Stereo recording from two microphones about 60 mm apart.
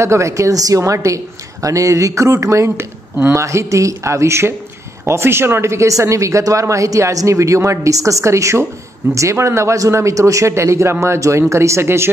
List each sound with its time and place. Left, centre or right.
0.0 s speech: right